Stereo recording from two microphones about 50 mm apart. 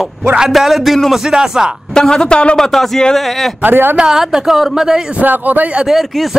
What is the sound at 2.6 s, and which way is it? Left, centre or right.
Speech, centre.